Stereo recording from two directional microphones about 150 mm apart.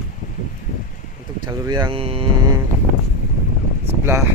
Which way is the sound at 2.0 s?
40° right (ahead or behind).